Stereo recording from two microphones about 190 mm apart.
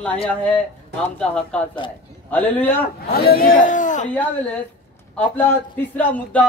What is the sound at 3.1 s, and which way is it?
Speech, 55° left (ahead or behind).